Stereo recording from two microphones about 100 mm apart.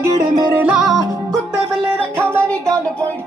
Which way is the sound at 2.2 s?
25° right (ahead or behind).